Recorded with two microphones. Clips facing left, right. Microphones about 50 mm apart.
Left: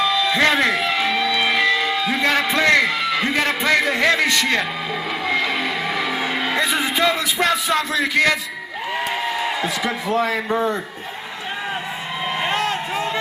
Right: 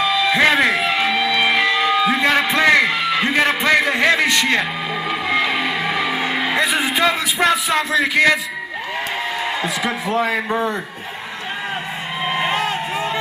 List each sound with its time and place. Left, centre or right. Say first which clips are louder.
0.0 s music: right 2 dB; right
2.9 s a sound: right 2 dB; right
3.3 s music: right 3 dB; right
10.0 s music: right 1 dB; centre
10.5 s a man's voice: even; centre
12.4 s a sound: right 1 dB; centre